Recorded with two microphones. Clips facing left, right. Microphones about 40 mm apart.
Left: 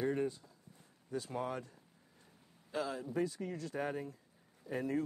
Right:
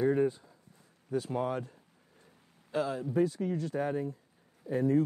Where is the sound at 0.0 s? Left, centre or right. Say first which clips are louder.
Right 8 dB; centre.